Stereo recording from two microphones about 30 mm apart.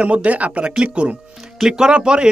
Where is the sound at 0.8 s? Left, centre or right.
Right.